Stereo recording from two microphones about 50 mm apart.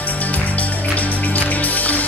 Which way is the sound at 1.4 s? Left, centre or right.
Left.